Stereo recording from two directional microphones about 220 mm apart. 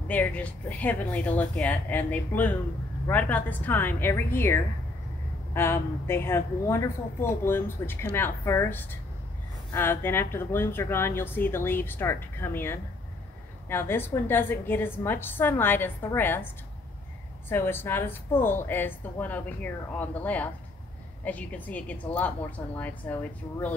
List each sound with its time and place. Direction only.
0.1 s a woman's voice: 5° left (ahead or behind)
17.5 s a woman's voice: 10° left (ahead or behind)